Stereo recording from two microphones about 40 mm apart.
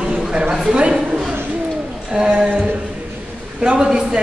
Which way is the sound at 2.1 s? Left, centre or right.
Right.